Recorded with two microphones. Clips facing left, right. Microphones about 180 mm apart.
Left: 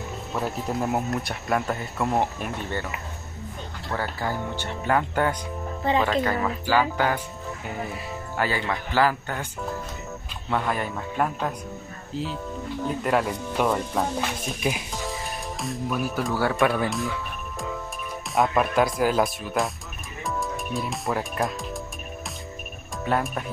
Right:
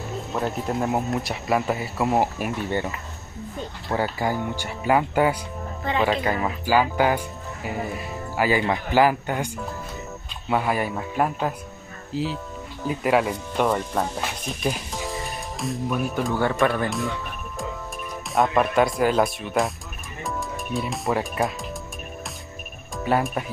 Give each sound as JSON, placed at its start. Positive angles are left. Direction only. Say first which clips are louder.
{"t": 0.4, "sound": "speech", "louder": "right 2 dB", "side_deg": 0}
{"t": 3.9, "sound": "speech", "louder": "right 4 dB", "side_deg": -15}
{"t": 8.4, "sound": "speech", "louder": "right 5 dB", "side_deg": -15}
{"t": 10.5, "sound": "speech", "louder": "right 3 dB", "side_deg": -5}
{"t": 18.3, "sound": "speech", "louder": "right 2 dB", "side_deg": 0}
{"t": 23.0, "sound": "speech", "louder": "right 3 dB", "side_deg": -5}